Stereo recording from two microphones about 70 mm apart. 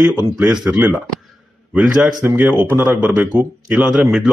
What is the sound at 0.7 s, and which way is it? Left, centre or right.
Speech, right.